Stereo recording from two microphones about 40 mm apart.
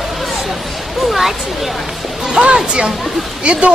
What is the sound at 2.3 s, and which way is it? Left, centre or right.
Speech, right.